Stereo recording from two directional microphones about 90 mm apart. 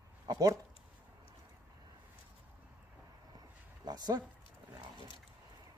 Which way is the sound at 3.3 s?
50° right (ahead or behind).